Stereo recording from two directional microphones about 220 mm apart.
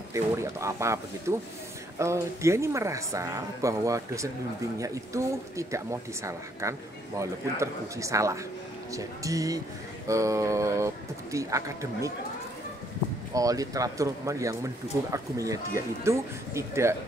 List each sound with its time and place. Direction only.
0.1 s speech: 15° right (ahead or behind)
13.3 s speech: 15° right (ahead or behind)